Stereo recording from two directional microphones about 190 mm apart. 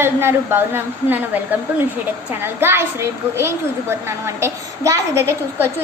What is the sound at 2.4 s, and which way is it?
A woman's voice, 10° right (ahead or behind).